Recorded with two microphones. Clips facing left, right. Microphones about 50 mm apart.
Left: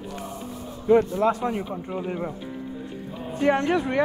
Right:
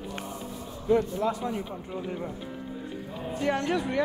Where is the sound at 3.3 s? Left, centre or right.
Left.